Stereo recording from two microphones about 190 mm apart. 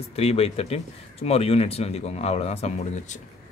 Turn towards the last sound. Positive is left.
turn(degrees=35)  # may be behind; listen again after turning